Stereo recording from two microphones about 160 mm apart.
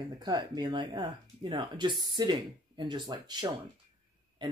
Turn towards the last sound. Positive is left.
turn(degrees=-30)  # may be behind; listen again after turning